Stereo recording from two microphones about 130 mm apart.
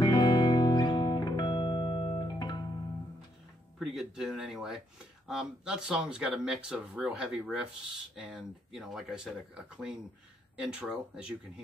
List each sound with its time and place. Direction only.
0.0 s music: 35° left (ahead or behind)
3.8 s speech: centre (ahead or behind)
10.6 s speech: 5° right (ahead or behind)